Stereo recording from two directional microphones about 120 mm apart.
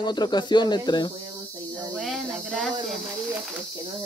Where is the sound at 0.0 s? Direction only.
35° left (ahead or behind).